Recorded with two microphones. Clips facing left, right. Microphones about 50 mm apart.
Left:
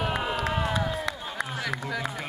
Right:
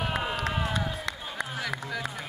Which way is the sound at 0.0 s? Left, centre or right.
Centre.